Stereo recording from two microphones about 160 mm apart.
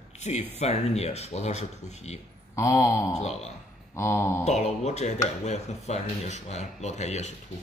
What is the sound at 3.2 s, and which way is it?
Speech, 40° left (ahead or behind).